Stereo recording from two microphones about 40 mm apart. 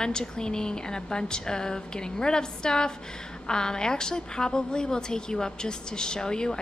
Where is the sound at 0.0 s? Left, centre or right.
Centre.